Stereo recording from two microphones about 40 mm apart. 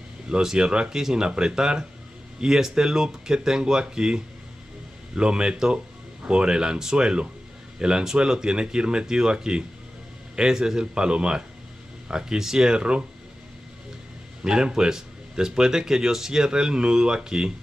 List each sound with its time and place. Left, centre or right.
0.3 s speech: centre
14.4 s speech: centre